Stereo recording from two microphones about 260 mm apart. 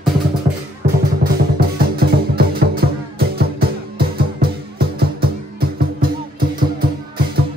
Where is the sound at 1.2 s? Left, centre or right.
Right.